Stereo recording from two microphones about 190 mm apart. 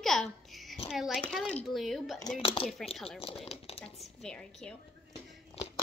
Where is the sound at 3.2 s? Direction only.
30° left (ahead or behind).